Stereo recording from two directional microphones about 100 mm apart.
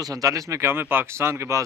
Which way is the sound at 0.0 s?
35° right (ahead or behind).